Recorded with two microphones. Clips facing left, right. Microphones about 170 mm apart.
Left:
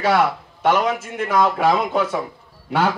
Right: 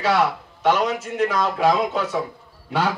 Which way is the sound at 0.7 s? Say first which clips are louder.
Left 1 dB; 50° left (ahead or behind).